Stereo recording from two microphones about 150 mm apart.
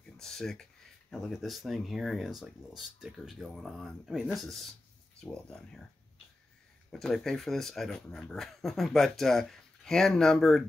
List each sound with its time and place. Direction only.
0.2 s speech: 5° left (ahead or behind)
6.9 s speech: centre (ahead or behind)